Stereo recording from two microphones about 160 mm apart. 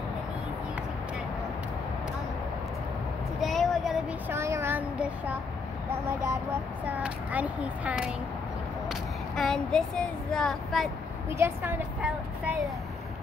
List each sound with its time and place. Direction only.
3.3 s vehicle: centre (ahead or behind)
4.3 s a sound: 15° right (ahead or behind)
6.2 s speech: 10° right (ahead or behind)
8.8 s speech: 5° left (ahead or behind)
11.2 s speech: 15° right (ahead or behind)